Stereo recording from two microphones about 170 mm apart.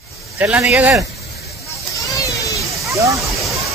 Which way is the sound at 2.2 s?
20° left (ahead or behind).